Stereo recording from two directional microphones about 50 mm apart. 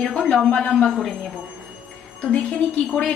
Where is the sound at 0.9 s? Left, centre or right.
Centre.